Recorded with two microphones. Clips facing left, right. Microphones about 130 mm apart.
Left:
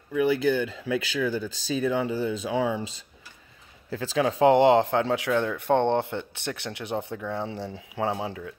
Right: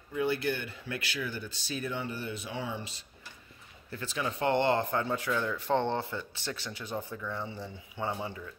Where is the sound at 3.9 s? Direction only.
90° left.